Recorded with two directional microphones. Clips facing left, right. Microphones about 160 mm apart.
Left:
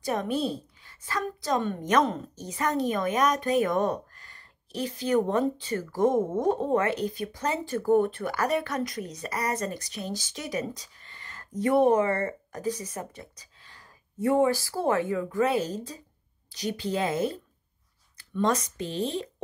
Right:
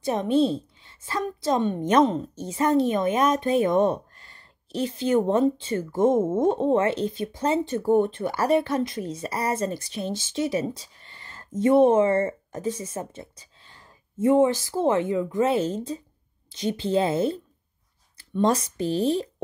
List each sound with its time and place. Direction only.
0.0 s a woman's voice: 25° right (ahead or behind)